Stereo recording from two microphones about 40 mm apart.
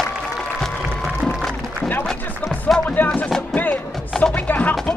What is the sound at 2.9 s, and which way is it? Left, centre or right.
Music, left.